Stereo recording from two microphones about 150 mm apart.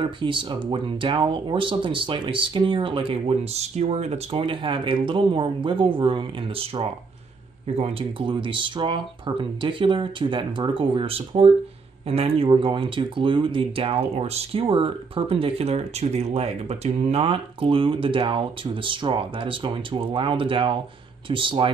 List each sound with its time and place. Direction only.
0.0 s speech: 35° right (ahead or behind)